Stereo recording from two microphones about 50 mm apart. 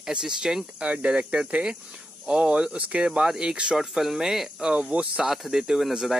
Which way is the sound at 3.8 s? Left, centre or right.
Centre.